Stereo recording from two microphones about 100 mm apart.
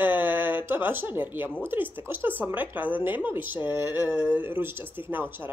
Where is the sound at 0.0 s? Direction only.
20° right (ahead or behind).